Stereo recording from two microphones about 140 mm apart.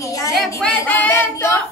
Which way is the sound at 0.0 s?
25° left (ahead or behind).